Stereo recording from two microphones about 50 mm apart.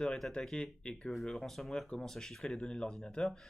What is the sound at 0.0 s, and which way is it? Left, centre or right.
Speech, centre.